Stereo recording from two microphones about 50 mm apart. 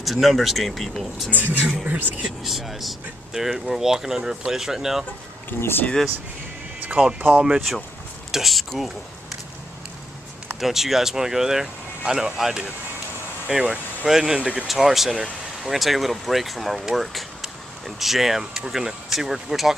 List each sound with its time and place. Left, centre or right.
0.0 s speech: centre
1.3 s speech: right
2.2 s speech: centre
5.5 s speech: left
7.2 s speech: right
8.3 s speech: centre
10.6 s speech: centre